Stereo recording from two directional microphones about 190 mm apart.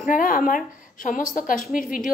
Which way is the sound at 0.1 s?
45° left (ahead or behind).